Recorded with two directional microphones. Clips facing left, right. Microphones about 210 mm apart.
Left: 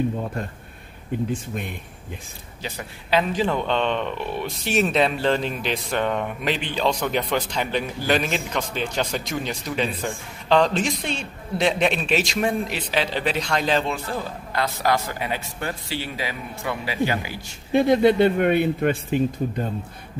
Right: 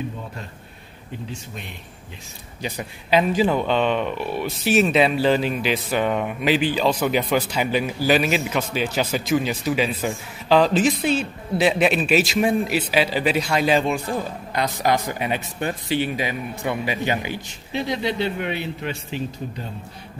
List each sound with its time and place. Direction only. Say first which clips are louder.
1.3 s a man's voice: left 7 dB; 50° left (ahead or behind)
2.6 s speech: right 4 dB; 15° right (ahead or behind)
17.7 s a man's voice: left 8 dB; 50° left (ahead or behind)